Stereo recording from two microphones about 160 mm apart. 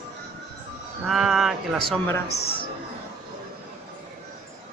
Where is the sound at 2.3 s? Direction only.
80° left.